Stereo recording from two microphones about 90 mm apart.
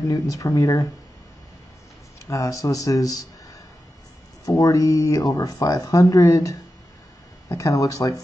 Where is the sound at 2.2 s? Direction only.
35° left (ahead or behind).